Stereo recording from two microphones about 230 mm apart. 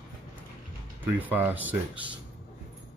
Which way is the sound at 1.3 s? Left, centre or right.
Centre.